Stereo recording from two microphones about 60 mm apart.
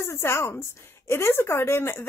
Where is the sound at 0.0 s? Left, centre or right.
Left.